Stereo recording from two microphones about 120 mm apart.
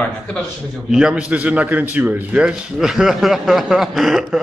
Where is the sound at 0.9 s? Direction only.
5° right (ahead or behind).